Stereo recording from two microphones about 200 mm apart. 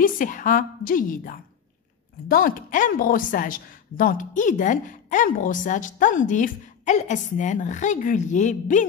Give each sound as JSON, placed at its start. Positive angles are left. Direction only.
{"t": 0.0, "sound": "a woman's voice", "side_deg": 40}